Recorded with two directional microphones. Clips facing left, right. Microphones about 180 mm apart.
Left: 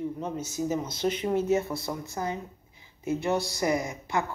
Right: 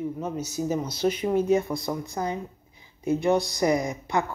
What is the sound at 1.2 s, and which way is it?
Speech, 15° right (ahead or behind).